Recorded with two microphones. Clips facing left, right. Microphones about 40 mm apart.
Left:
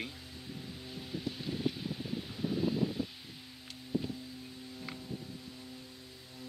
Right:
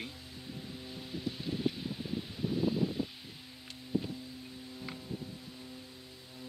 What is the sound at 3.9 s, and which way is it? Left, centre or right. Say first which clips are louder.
Music: right 1 dB; centre.